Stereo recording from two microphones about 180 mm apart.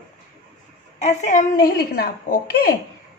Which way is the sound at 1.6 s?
60° left (ahead or behind).